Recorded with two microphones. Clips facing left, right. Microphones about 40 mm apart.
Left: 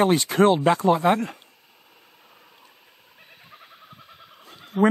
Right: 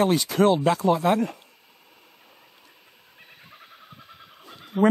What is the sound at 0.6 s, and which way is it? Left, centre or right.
Speech, centre.